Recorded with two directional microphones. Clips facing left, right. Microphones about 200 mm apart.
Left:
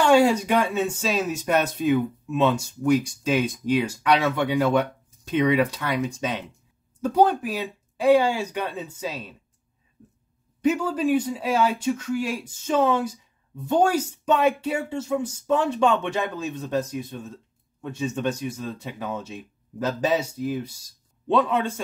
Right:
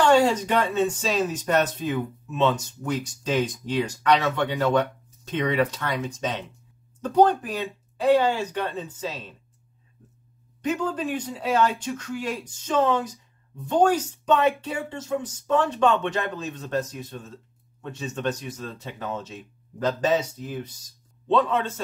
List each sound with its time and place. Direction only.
0.0 s speech: 10° left (ahead or behind)
10.6 s speech: 10° left (ahead or behind)